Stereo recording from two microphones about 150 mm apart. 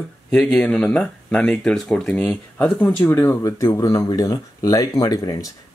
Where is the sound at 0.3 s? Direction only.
5° left (ahead or behind).